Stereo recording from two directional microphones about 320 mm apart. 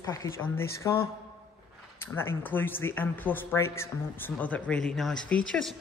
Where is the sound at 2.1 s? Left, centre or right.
Centre.